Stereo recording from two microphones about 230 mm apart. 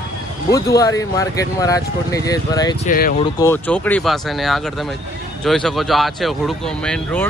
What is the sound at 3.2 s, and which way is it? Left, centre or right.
Speech, centre.